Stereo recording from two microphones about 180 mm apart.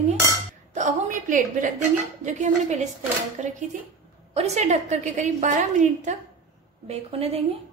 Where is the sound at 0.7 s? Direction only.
45° right (ahead or behind).